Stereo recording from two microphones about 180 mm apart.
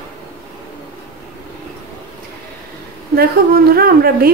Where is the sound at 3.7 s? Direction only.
55° right (ahead or behind).